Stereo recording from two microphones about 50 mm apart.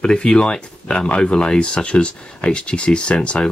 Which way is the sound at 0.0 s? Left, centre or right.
Centre.